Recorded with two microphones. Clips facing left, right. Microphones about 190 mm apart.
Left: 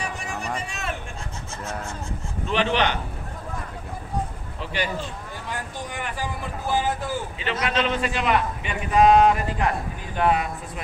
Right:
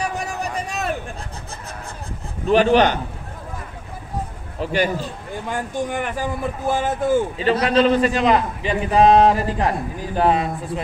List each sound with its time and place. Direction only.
0.0 s vehicle: 40° right (ahead or behind)
2.5 s a man's voice: 45° right (ahead or behind)
4.6 s a man's voice: 45° right (ahead or behind)